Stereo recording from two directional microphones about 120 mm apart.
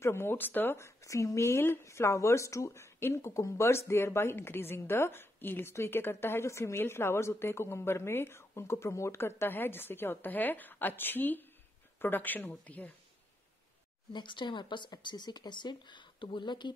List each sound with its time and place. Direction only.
0.0 s speech: 20° left (ahead or behind)
14.1 s speech: 40° left (ahead or behind)